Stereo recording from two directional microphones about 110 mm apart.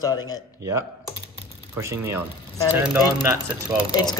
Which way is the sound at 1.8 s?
25° right (ahead or behind).